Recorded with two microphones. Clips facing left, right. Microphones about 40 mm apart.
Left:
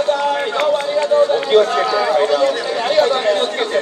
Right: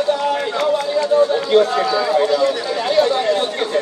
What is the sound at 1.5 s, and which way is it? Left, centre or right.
Speech, left.